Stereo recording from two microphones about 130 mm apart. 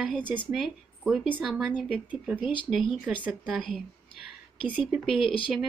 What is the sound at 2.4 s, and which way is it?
Speech, 40° left (ahead or behind).